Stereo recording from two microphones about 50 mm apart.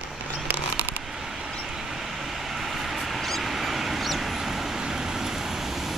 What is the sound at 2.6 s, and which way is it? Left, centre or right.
Vehicle, centre.